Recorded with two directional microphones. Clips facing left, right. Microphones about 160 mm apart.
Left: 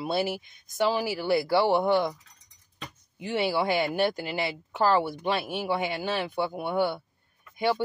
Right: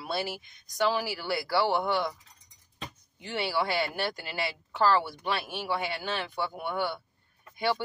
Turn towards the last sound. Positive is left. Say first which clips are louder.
# left 3 dB
turn(degrees=20)  # may be behind; listen again after turning